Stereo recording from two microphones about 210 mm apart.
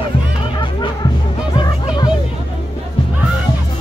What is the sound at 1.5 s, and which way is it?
Music, 20° left (ahead or behind).